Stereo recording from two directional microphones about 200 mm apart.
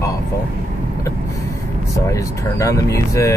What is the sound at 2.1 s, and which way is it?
Speech, 15° left (ahead or behind).